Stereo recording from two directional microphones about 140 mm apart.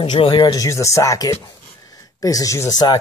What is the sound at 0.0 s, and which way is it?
Speech, 35° left (ahead or behind).